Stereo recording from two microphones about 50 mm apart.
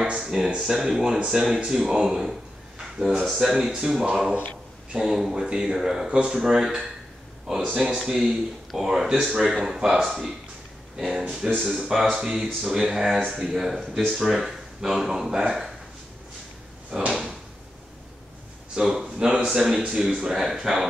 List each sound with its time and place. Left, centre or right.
0.0 s speech: centre
3.7 s speech: centre
4.1 s speech: centre
18.8 s speech: centre